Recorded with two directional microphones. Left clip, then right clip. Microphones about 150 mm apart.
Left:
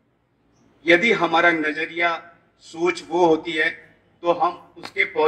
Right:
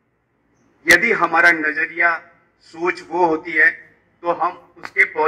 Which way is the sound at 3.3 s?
20° left (ahead or behind).